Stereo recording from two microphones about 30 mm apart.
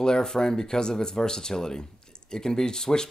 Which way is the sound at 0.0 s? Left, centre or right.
Left.